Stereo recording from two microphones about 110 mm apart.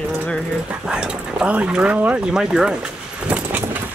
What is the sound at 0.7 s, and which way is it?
Speech, 10° right (ahead or behind).